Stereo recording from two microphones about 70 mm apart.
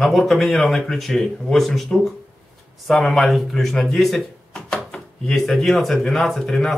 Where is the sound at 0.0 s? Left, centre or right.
Centre.